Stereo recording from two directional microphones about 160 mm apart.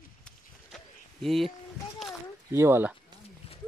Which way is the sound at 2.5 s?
15° right (ahead or behind).